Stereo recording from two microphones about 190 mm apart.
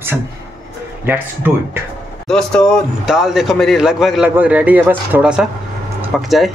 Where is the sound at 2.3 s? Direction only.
5° left (ahead or behind).